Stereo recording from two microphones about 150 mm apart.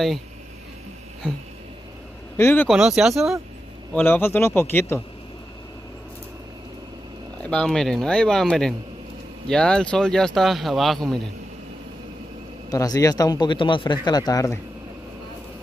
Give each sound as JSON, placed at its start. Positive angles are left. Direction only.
{"t": 2.3, "sound": "a man's voice", "side_deg": 15}
{"t": 2.7, "sound": "speech", "side_deg": -5}
{"t": 3.9, "sound": "a man's voice", "side_deg": 15}
{"t": 7.4, "sound": "speech", "side_deg": 5}
{"t": 12.6, "sound": "speech", "side_deg": 25}